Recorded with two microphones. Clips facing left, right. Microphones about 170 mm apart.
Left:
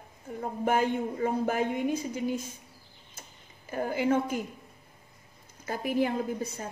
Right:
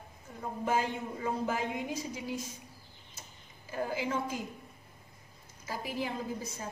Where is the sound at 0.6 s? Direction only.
60° left (ahead or behind).